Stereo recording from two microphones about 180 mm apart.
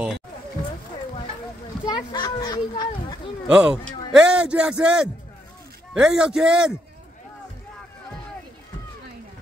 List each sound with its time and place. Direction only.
1.9 s speech: 25° left (ahead or behind)
3.4 s a man's voice: 5° right (ahead or behind)